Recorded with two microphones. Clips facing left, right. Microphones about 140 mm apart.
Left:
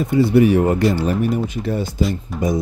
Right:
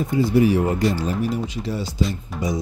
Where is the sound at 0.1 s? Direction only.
65° left (ahead or behind).